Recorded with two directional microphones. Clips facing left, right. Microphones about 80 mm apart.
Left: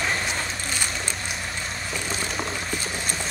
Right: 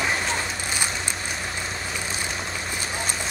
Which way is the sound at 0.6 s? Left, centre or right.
Centre.